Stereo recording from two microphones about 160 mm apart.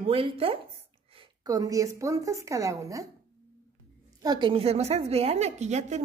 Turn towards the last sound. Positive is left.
turn(degrees=-45)  # may be behind; listen again after turning